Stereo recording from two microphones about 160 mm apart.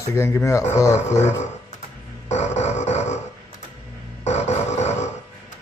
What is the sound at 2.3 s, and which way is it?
Music, 45° left (ahead or behind).